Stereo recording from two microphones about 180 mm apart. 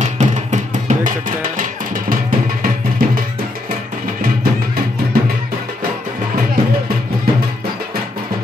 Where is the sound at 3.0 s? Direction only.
50° right (ahead or behind).